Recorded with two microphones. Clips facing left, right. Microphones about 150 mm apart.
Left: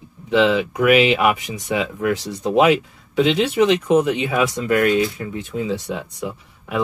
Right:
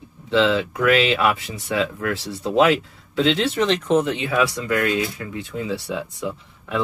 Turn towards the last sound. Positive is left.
turn(degrees=15)  # may be behind; listen again after turning